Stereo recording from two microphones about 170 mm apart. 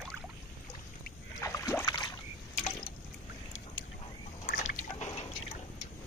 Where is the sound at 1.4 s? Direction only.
15° left (ahead or behind).